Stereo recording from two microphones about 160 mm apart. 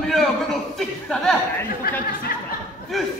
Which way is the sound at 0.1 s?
Centre (ahead or behind).